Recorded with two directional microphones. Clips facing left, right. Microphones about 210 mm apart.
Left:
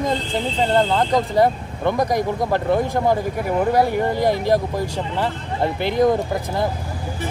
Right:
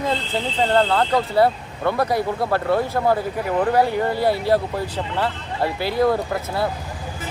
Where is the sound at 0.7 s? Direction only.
15° left (ahead or behind).